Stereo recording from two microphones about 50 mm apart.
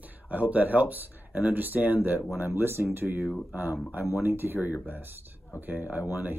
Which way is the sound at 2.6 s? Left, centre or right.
Right.